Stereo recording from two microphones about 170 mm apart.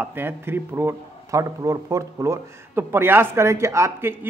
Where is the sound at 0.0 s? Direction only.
10° right (ahead or behind).